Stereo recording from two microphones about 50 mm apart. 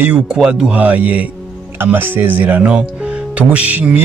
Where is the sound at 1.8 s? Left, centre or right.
Right.